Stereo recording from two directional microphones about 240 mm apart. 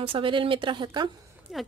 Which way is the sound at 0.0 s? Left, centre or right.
Right.